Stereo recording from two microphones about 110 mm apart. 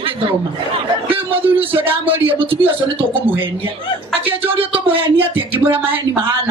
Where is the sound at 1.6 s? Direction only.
55° right (ahead or behind).